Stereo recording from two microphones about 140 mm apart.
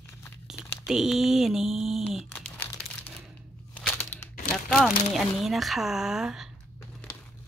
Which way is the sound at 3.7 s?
10° left (ahead or behind).